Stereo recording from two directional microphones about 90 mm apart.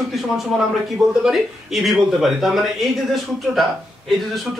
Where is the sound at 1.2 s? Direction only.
Centre (ahead or behind).